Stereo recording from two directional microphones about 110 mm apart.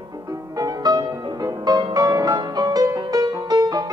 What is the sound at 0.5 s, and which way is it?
Music, 35° right (ahead or behind).